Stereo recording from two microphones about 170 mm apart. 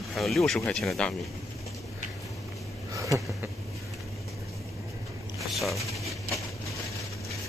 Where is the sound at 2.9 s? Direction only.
20° right (ahead or behind).